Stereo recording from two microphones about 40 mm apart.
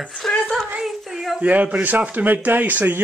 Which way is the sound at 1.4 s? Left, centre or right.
Right.